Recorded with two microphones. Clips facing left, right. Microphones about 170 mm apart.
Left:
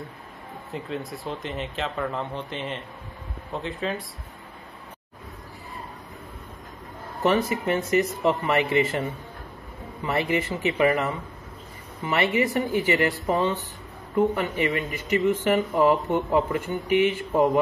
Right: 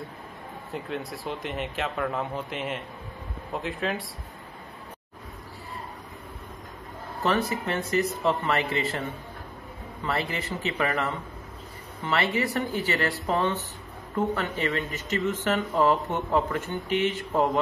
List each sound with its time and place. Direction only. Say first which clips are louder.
0.7 s speech: left 1 dB; centre (ahead or behind)
7.2 s speech: left 4 dB; 15° left (ahead or behind)
10.0 s speech: left 5 dB; 15° left (ahead or behind)